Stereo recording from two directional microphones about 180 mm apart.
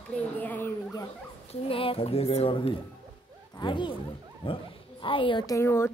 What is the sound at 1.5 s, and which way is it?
A woman's voice, 30° left (ahead or behind).